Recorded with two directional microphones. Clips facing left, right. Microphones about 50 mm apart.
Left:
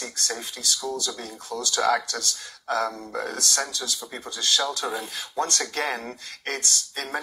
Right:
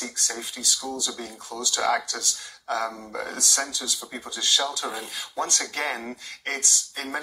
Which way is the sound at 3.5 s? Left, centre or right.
Centre.